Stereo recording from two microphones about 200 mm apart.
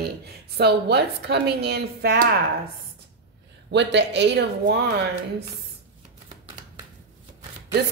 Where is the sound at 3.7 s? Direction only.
60° right (ahead or behind).